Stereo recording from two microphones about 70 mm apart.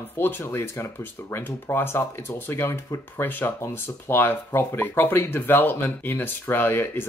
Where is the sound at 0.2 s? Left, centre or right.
Left.